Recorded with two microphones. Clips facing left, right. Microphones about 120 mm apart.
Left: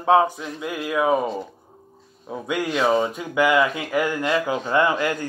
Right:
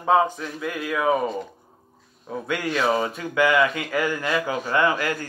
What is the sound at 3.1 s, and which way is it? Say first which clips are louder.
Speech: left 1 dB; 15° left (ahead or behind).